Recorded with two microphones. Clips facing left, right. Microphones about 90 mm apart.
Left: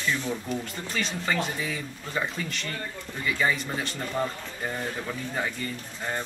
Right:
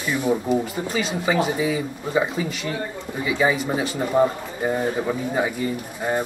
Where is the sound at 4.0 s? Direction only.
20° right (ahead or behind).